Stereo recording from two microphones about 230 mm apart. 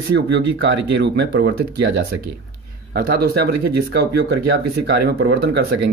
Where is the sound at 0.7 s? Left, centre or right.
Right.